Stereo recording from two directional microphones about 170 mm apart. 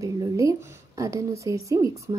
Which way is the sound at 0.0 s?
20° right (ahead or behind).